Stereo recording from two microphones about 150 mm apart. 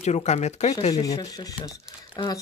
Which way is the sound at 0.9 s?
25° left (ahead or behind).